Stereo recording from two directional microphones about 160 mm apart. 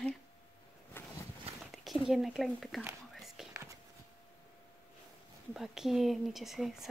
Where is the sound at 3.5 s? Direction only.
20° right (ahead or behind).